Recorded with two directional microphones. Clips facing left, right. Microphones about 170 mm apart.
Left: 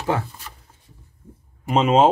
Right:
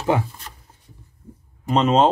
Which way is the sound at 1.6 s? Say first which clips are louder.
Left 1 dB; 10° left (ahead or behind).